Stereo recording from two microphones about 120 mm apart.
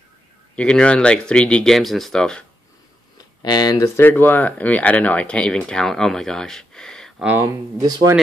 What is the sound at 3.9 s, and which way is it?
Speech, 15° left (ahead or behind).